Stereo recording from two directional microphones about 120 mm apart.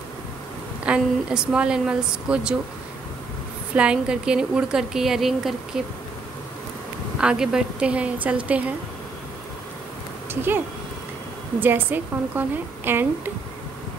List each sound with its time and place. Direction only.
0.8 s a woman's voice: 10° right (ahead or behind)
3.7 s a woman's voice: 10° right (ahead or behind)
7.2 s a woman's voice: 5° right (ahead or behind)
11.6 s a woman's voice: 15° right (ahead or behind)